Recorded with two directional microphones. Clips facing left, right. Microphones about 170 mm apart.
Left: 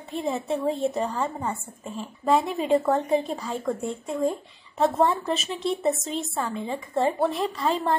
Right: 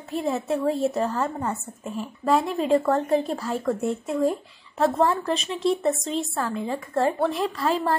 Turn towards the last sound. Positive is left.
turn(degrees=0)  # may be behind; listen again after turning